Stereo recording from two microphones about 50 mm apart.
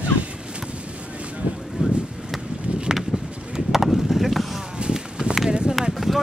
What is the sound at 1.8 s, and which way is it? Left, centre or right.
Wind, centre.